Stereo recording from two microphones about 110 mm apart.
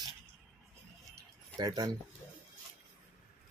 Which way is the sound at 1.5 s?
35° right (ahead or behind).